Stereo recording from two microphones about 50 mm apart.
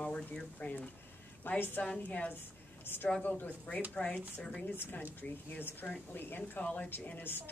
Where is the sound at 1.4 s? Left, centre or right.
Left.